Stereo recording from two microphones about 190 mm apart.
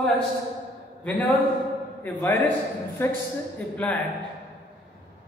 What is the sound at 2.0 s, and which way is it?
A man's voice, 10° left (ahead or behind).